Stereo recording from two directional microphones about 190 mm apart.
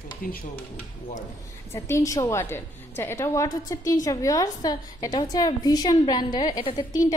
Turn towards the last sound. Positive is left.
turn(degrees=20)  # may be behind; listen again after turning